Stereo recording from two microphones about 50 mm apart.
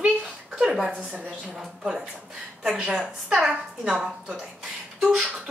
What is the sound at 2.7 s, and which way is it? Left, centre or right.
Speech, centre.